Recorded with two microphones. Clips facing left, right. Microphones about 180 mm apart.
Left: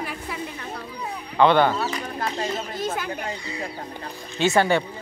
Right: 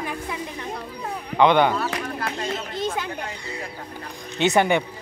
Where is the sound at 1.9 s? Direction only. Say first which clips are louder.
Even; 65° right (ahead or behind).